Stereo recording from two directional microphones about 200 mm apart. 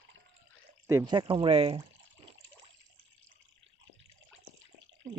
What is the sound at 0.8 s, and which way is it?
Speech, 20° right (ahead or behind).